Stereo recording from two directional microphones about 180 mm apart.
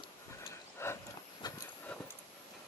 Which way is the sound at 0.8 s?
15° left (ahead or behind).